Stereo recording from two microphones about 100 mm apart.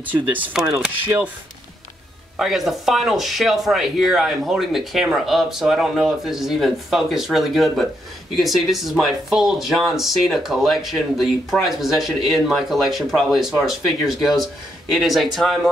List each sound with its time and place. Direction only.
0.0 s speech: 15° right (ahead or behind)
2.3 s speech: centre (ahead or behind)